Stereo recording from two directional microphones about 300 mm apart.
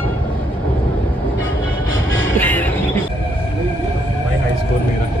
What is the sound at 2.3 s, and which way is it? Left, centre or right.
Music, centre.